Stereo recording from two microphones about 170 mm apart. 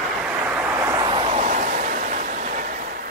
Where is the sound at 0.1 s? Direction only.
5° right (ahead or behind).